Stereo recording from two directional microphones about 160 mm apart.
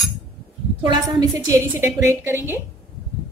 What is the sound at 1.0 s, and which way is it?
A woman's voice, 20° right (ahead or behind).